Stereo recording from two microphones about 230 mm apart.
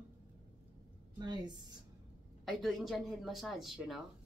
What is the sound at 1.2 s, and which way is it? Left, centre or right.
Speech, centre.